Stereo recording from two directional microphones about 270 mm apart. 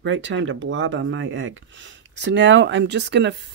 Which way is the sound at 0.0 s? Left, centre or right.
Right.